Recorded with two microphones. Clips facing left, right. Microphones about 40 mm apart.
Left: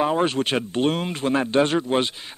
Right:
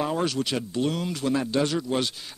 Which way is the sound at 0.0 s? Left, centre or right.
Left.